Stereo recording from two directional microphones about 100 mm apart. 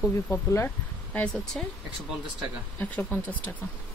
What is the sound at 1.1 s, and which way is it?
Speech, 10° left (ahead or behind).